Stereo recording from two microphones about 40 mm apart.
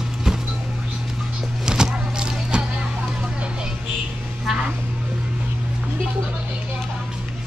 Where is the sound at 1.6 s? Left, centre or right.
Centre.